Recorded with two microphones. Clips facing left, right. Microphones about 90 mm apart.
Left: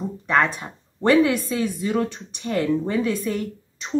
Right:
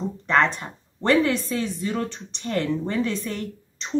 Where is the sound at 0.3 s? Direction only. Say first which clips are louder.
Even; 5° left (ahead or behind).